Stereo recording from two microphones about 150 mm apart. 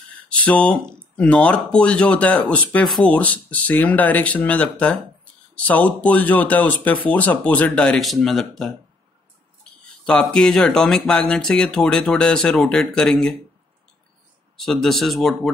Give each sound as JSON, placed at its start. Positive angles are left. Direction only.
{"t": 0.3, "sound": "speech", "side_deg": 10}
{"t": 10.0, "sound": "speech", "side_deg": 5}
{"t": 14.6, "sound": "speech", "side_deg": 0}